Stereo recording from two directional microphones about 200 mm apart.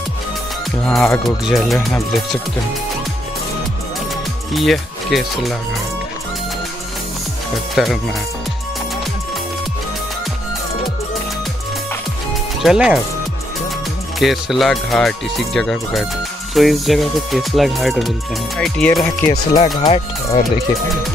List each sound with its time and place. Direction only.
0.8 s speech: 5° left (ahead or behind)
4.6 s speech: centre (ahead or behind)
7.7 s speech: centre (ahead or behind)
12.6 s speech: centre (ahead or behind)
14.2 s speech: centre (ahead or behind)
19.8 s speech: 30° left (ahead or behind)